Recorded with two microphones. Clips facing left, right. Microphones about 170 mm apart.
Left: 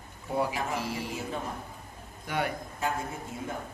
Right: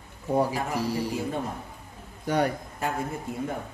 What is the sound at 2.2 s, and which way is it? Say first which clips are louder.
Speech: right 6 dB; 40° right (ahead or behind).